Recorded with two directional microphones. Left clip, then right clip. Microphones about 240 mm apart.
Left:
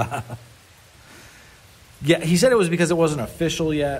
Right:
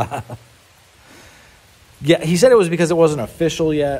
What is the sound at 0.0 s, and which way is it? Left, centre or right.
Speech, right.